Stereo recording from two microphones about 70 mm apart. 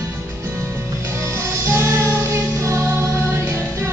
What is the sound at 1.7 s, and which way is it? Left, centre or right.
Music, right.